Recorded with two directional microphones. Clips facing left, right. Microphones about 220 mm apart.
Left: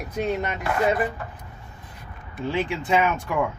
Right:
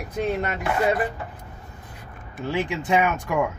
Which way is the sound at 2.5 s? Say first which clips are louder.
Even; 15° right (ahead or behind).